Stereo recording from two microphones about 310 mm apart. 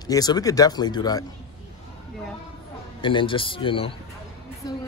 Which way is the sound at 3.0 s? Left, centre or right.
Centre.